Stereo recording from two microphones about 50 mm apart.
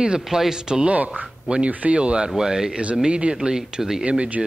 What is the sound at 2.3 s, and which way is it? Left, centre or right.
Speech, centre.